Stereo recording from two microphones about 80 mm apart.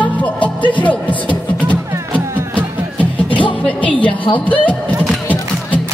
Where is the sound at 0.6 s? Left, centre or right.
Centre.